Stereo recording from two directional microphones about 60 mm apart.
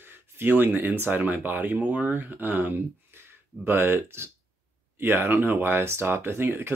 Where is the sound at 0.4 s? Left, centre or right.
Right.